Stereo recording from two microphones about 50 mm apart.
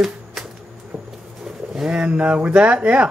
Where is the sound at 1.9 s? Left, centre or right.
Right.